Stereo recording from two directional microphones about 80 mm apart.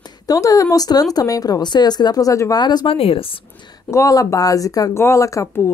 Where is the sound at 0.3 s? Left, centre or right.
Left.